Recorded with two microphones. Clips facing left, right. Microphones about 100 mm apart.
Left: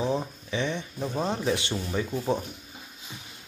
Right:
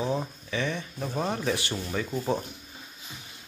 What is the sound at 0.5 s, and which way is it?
Speech, 20° left (ahead or behind).